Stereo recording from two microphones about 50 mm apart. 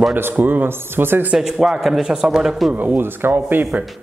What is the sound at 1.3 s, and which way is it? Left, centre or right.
A man's voice, centre.